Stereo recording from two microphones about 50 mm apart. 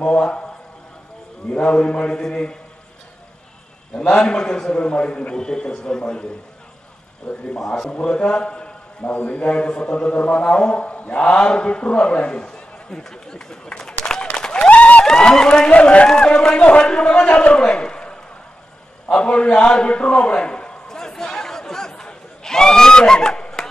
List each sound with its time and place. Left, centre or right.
0.0 s a man's voice: centre
1.5 s a man's voice: left
4.2 s a man's voice: centre
7.5 s a man's voice: centre
7.9 s a man's voice: left
9.1 s a man's voice: left; by 13.9 s centre
14.3 s applause: centre
14.7 s a sound: left
15.0 s a man's voice: centre
19.0 s a sound: left